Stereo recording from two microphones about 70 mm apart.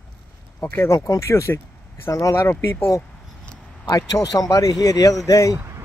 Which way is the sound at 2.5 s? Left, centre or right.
Left.